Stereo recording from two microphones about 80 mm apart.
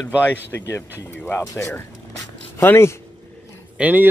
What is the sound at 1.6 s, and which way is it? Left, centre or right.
Speech, left.